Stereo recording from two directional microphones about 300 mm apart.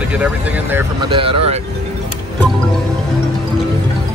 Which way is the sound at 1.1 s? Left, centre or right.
Centre.